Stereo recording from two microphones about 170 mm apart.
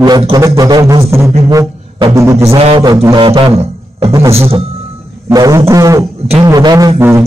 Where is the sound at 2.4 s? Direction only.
35° right (ahead or behind).